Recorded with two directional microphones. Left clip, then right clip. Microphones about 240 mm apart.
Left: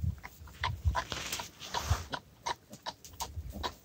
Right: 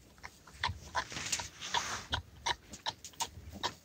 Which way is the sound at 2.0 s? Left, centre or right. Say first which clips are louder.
Right 2 dB; right.